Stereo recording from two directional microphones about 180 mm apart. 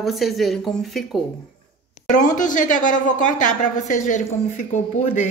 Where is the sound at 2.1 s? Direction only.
45° left (ahead or behind).